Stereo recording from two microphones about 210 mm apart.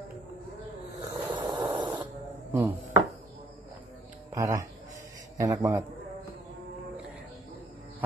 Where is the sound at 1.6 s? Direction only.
20° right (ahead or behind).